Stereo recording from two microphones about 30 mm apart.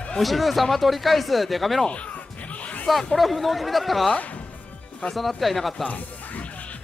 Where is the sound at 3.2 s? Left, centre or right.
Centre.